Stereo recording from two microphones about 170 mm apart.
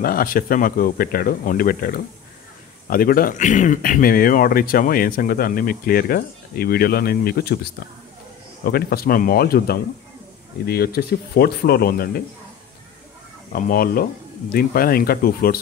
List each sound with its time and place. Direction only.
0.0 s speech: 60° left (ahead or behind)
8.6 s speech: 65° left (ahead or behind)
13.5 s speech: 55° left (ahead or behind)